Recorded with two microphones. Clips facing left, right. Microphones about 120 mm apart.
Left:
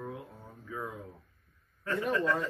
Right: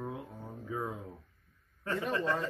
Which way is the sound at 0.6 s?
20° right (ahead or behind).